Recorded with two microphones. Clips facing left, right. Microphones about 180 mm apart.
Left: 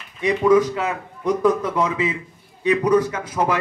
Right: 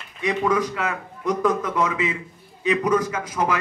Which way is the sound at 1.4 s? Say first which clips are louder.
Left 3 dB; 30° left (ahead or behind).